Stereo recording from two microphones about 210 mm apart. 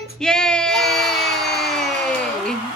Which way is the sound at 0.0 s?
5° left (ahead or behind).